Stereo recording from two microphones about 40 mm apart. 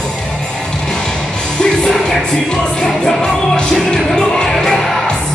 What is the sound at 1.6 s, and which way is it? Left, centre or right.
Music, centre.